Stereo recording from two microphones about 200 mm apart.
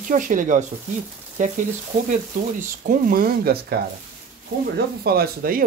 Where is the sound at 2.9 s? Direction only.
45° right (ahead or behind).